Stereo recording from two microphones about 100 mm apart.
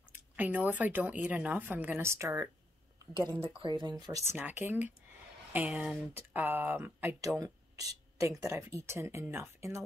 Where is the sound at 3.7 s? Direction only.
45° right (ahead or behind).